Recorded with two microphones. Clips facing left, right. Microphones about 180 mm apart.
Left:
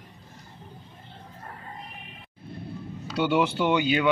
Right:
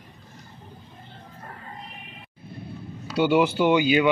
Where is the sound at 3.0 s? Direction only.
5° right (ahead or behind).